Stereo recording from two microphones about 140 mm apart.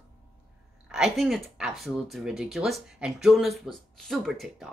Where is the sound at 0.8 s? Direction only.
5° right (ahead or behind).